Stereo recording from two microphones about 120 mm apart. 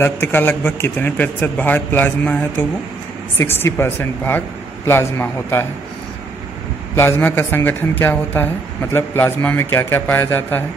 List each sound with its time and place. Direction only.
0.0 s a man's voice: 20° left (ahead or behind)
3.3 s a woman's voice: 20° left (ahead or behind)
7.0 s a man's voice: 20° left (ahead or behind)